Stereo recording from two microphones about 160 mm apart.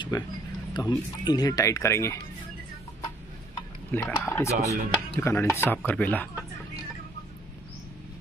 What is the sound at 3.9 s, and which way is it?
Speech, 15° left (ahead or behind).